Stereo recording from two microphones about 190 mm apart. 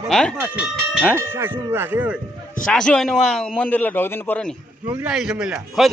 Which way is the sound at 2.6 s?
5° left (ahead or behind).